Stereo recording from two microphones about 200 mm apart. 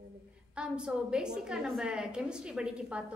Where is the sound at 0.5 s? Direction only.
5° right (ahead or behind).